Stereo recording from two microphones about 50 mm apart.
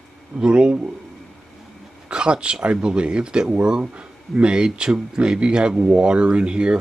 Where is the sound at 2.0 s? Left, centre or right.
Centre.